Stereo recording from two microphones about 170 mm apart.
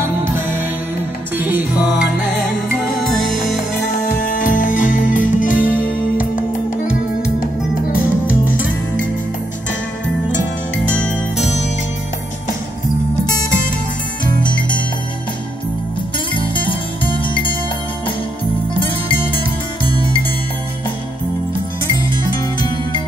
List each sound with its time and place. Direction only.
0.0 s music: 15° right (ahead or behind)
4.2 s music: 50° left (ahead or behind)
10.9 s music: 5° left (ahead or behind)
14.2 s music: 25° left (ahead or behind)
16.3 s music: 30° left (ahead or behind)
22.6 s music: 25° left (ahead or behind)